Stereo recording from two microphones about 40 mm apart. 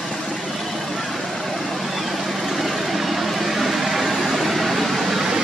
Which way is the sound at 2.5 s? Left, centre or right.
Centre.